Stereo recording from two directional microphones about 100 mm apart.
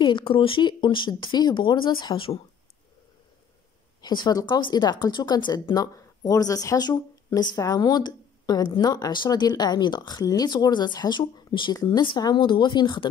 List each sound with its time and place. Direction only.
0.0 s speech: 55° left (ahead or behind)
4.0 s speech: 50° left (ahead or behind)
11.7 s speech: 35° left (ahead or behind)
12.0 s speech: 45° left (ahead or behind)